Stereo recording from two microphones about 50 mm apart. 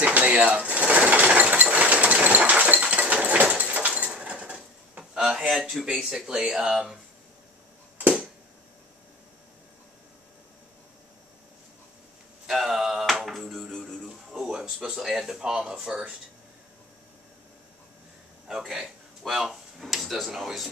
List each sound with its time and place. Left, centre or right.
0.0 s sewing machine: right
4.1 s dishes: right
5.5 s speech: centre
5.9 s speech: centre
12.4 s a sound: centre
13.7 s music: centre
14.0 s a sound: centre
15.0 s speech: centre
18.5 s a sound: centre
20.2 s speech: centre